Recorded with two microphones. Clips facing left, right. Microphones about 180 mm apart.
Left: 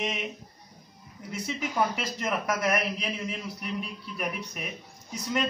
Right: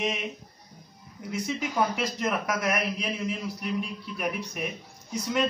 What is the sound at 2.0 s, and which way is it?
Speech, 5° left (ahead or behind).